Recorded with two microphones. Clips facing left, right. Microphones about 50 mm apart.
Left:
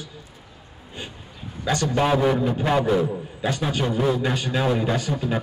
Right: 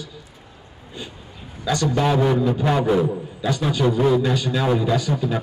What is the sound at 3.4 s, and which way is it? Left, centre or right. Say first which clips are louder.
Speech: right 2 dB; left.